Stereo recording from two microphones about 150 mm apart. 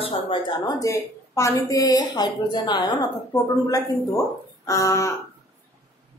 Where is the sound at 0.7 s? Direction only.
20° left (ahead or behind).